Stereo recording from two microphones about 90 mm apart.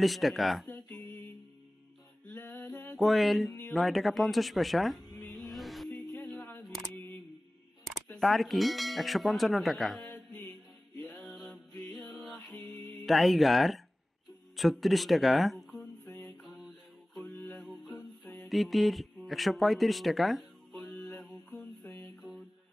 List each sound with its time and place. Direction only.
0.0 s speech: centre (ahead or behind)
2.2 s music: 15° left (ahead or behind)
3.0 s speech: centre (ahead or behind)
5.1 s music: centre (ahead or behind)
6.3 s single-lens reflex camera: 20° left (ahead or behind)
7.8 s speech: centre (ahead or behind)
10.1 s music: 15° left (ahead or behind)
13.0 s speech: centre (ahead or behind)
15.8 s music: 15° left (ahead or behind)
16.4 s mantra: centre (ahead or behind)
17.2 s music: 5° left (ahead or behind)
18.5 s speech: centre (ahead or behind)
19.2 s music: centre (ahead or behind)